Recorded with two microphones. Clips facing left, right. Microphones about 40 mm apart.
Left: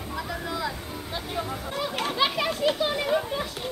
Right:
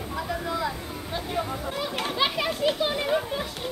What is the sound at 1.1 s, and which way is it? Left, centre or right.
Speech, centre.